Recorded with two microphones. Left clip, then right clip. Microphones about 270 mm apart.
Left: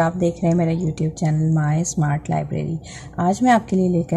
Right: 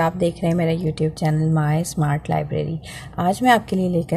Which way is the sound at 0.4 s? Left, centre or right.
Right.